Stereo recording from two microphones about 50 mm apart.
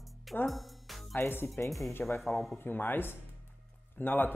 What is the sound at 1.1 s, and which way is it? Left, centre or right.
Speech, left.